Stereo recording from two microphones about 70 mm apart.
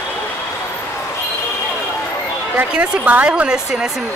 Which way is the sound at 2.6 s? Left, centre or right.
Right.